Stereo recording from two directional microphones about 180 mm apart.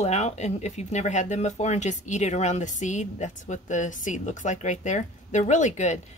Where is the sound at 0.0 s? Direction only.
40° left (ahead or behind).